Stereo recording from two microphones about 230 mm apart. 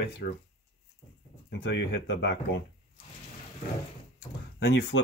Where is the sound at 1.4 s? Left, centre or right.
Left.